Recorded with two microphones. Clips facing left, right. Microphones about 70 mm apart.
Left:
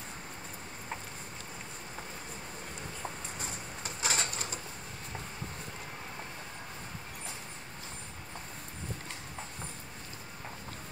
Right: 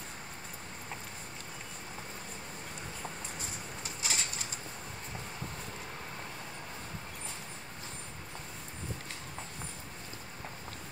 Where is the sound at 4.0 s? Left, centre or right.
Left.